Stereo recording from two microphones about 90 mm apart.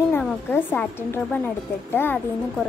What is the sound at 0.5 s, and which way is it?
A woman's voice, 20° left (ahead or behind).